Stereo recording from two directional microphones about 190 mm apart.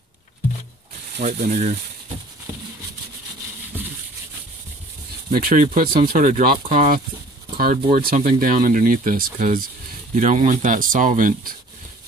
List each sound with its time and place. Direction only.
1.2 s speech: 40° right (ahead or behind)
5.3 s speech: 50° right (ahead or behind)